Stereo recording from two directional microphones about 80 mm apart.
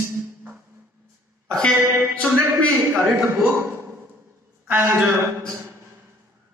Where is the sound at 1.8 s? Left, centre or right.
Right.